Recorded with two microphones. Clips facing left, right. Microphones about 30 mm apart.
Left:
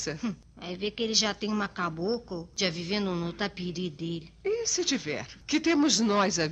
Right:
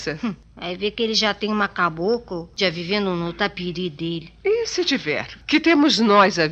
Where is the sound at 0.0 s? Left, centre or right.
Right.